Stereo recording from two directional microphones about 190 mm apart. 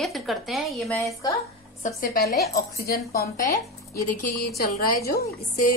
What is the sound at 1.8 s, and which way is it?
A woman's voice, 50° left (ahead or behind).